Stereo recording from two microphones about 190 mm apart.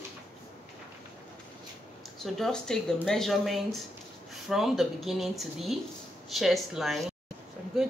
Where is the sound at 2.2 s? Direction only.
Centre (ahead or behind).